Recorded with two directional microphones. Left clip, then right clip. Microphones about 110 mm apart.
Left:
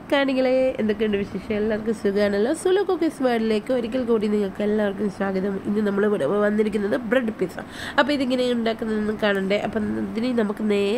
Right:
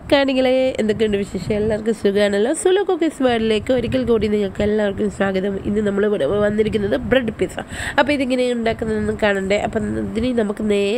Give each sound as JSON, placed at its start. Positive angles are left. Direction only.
{"t": 0.1, "sound": "speech", "side_deg": -75}
{"t": 1.9, "sound": "a woman's voice", "side_deg": -70}